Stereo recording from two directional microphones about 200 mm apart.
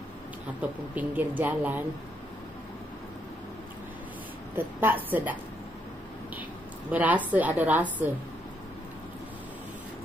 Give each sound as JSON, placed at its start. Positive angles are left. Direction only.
{"t": 0.6, "sound": "speech", "side_deg": -10}
{"t": 4.6, "sound": "speech", "side_deg": -10}
{"t": 6.9, "sound": "speech", "side_deg": -10}